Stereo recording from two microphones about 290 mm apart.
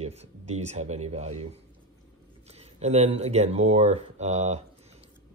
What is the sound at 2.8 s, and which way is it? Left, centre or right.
Speech, right.